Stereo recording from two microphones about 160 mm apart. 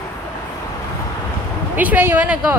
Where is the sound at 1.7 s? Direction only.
10° right (ahead or behind).